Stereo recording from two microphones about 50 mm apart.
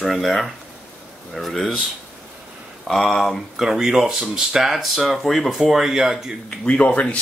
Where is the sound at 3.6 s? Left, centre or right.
Centre.